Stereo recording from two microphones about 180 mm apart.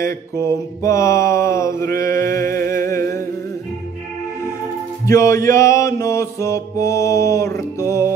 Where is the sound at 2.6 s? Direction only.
50° right (ahead or behind).